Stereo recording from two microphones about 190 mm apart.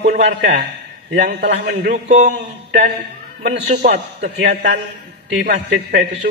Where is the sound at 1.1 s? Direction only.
55° right (ahead or behind).